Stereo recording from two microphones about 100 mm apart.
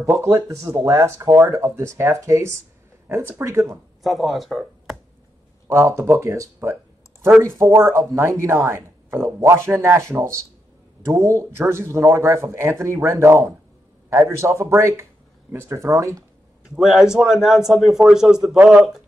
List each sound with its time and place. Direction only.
0.0 s speech: 30° right (ahead or behind)
4.0 s speech: centre (ahead or behind)
5.7 s speech: 30° right (ahead or behind)
16.7 s a man's voice: 5° right (ahead or behind)